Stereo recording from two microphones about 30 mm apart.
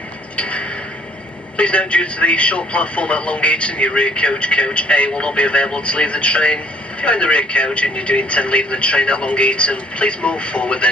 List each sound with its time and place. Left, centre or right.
0.4 s a sound: left
1.6 s a man's voice: left
5.1 s speech: left
5.4 s a man's voice: left